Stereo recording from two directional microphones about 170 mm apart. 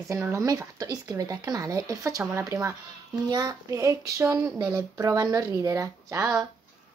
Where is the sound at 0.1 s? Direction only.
20° right (ahead or behind).